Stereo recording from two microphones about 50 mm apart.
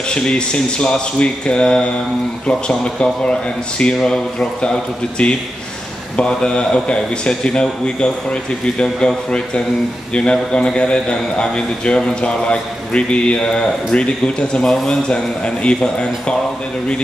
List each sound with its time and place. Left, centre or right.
0.1 s a man's voice: centre